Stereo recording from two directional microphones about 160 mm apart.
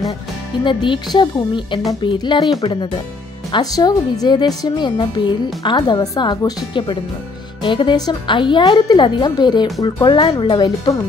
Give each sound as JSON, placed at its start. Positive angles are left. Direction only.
{"t": 0.7, "sound": "a woman's voice", "side_deg": 30}